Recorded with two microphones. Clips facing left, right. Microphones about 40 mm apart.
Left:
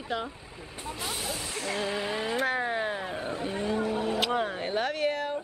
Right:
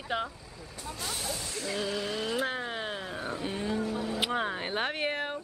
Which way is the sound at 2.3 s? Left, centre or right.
Centre.